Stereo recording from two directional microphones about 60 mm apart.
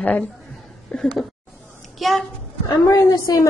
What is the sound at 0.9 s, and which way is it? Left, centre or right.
Speech, centre.